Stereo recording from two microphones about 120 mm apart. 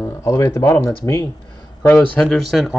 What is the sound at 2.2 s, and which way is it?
Speech, centre (ahead or behind).